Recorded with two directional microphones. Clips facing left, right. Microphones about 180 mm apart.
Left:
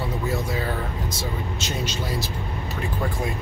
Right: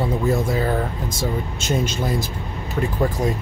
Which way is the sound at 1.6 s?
50° right (ahead or behind).